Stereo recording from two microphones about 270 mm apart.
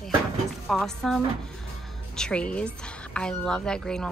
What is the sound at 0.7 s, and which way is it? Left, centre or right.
Speech, centre.